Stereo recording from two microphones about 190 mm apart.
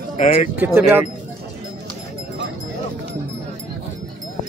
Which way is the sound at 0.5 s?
10° right (ahead or behind).